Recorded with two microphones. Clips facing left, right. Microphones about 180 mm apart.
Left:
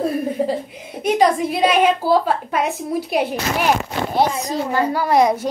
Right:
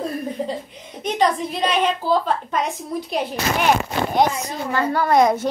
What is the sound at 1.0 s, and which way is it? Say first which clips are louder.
A woman's voice: left 4 dB; 10° left (ahead or behind).